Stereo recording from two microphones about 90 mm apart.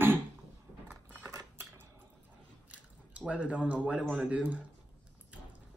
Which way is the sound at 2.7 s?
15° right (ahead or behind).